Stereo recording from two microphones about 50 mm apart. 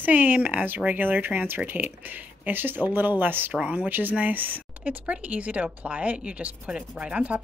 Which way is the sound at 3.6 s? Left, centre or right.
Right.